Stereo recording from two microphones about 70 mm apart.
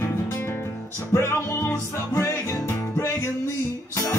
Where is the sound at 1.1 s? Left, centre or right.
Left.